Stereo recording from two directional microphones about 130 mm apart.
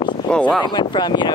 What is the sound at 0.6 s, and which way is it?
Speech, 35° left (ahead or behind).